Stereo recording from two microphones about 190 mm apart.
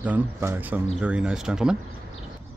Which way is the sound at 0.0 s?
10° right (ahead or behind).